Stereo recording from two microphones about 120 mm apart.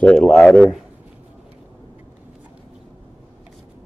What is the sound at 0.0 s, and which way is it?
Speech, 5° left (ahead or behind).